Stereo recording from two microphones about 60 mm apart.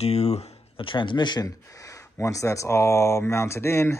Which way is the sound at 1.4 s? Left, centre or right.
Left.